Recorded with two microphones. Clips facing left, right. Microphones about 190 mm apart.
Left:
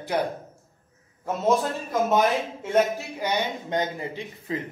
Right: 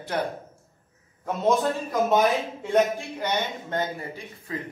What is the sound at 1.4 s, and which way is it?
A man's voice, centre (ahead or behind).